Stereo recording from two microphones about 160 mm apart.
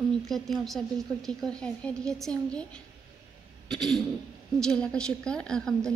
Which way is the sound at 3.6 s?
Centre (ahead or behind).